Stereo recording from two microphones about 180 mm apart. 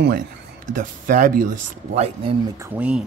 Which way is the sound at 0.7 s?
50° right (ahead or behind).